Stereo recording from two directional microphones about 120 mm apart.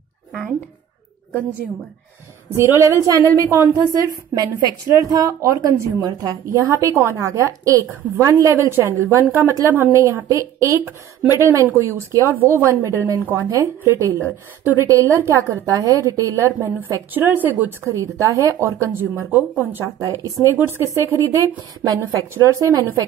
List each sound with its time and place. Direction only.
0.3 s a sound: centre (ahead or behind)
2.5 s a woman's voice: 20° right (ahead or behind)
20.0 s a woman's voice: 30° right (ahead or behind)